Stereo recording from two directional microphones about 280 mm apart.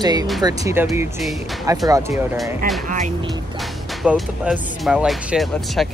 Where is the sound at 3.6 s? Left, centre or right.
Centre.